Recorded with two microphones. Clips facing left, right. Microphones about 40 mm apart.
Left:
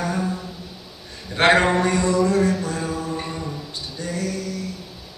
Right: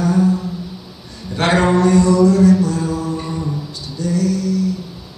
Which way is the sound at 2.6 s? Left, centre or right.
Left.